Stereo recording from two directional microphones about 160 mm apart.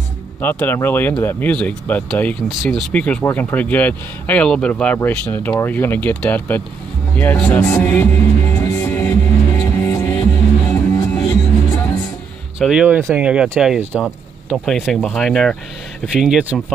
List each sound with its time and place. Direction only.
0.4 s speech: 10° left (ahead or behind)
7.2 s music: 10° left (ahead or behind)
12.5 s speech: 5° right (ahead or behind)